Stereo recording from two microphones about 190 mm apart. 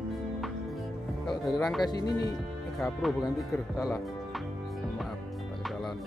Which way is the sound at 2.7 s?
Centre (ahead or behind).